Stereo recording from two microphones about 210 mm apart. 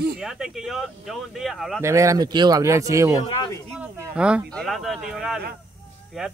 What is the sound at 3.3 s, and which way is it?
Speech, 25° left (ahead or behind).